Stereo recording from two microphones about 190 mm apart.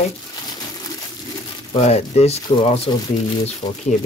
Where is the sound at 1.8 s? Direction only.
35° left (ahead or behind).